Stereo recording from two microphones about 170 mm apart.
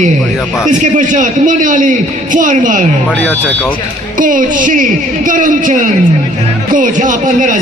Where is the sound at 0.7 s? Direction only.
50° right (ahead or behind).